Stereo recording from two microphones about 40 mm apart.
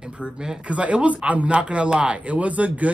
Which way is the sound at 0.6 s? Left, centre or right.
Right.